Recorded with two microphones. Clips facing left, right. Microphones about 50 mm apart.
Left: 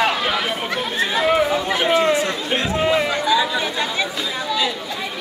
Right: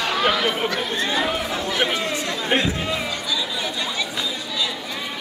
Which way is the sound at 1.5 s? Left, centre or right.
Left.